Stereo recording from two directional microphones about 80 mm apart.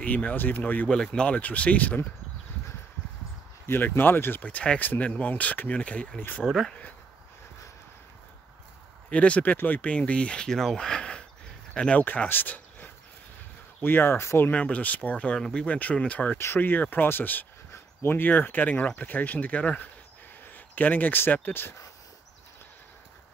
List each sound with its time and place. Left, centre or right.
0.0 s speech: centre
0.8 s speech: centre
3.6 s speech: left
9.1 s speech: centre; by 14.5 s left
14.5 s speech: centre
16.3 s speech: left